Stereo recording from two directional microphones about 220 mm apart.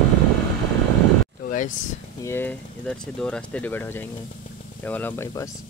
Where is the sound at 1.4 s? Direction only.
35° left (ahead or behind).